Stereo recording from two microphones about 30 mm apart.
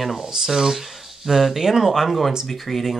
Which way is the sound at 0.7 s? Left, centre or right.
Centre.